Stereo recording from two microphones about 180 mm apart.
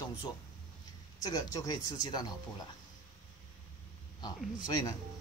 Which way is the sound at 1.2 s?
20° left (ahead or behind).